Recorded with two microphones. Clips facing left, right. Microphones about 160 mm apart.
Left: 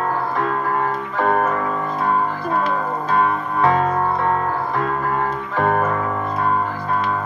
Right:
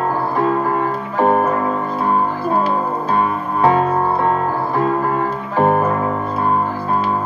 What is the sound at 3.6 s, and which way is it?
Music, 30° right (ahead or behind).